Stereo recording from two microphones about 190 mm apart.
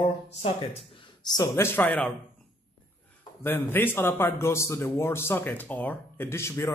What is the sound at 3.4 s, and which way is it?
A man's voice, 10° left (ahead or behind).